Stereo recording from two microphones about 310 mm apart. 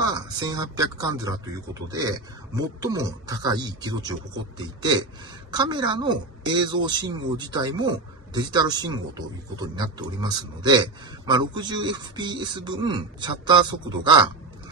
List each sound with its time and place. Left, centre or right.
0.1 s a woman's voice: centre